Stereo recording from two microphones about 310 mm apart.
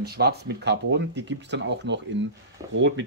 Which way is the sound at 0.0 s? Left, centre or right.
Right.